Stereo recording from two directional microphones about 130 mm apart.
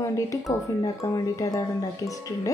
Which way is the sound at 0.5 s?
25° left (ahead or behind).